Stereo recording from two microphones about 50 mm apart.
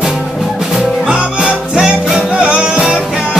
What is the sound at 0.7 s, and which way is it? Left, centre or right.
Music, centre.